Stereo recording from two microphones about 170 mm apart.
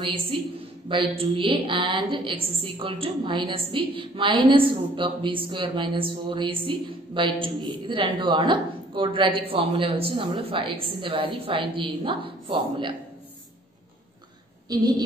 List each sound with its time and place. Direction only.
0.0 s a woman's voice: 35° right (ahead or behind)
14.7 s a woman's voice: 20° right (ahead or behind)